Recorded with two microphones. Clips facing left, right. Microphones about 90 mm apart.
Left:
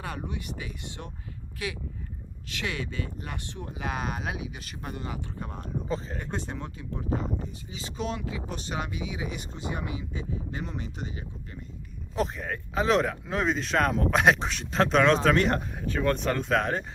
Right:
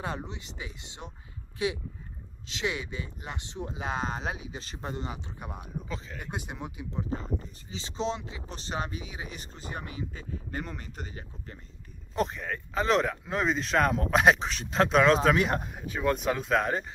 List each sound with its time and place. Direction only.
0.0 s speech: 25° right (ahead or behind)
6.1 s speech: 10° right (ahead or behind)
7.1 s speech: 40° left (ahead or behind)
7.7 s speech: 25° right (ahead or behind); by 11.2 s 40° right (ahead or behind)
12.2 s speech: centre (ahead or behind)